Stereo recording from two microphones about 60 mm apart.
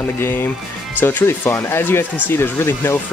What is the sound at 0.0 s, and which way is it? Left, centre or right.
Speech, left.